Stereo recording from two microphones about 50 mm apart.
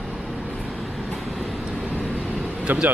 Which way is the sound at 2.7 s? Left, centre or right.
Right.